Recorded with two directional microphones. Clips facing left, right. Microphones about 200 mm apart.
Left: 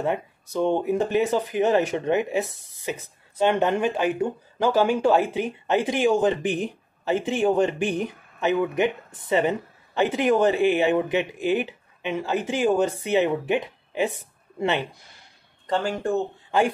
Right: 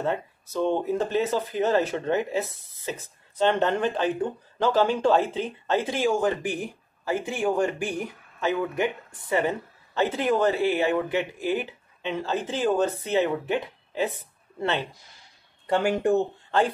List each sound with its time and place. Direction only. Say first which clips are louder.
0.0 s speech: left 2 dB; 15° left (ahead or behind)
15.6 s speech: right 2 dB; 15° right (ahead or behind)
16.4 s a sound: left 5 dB; 10° left (ahead or behind)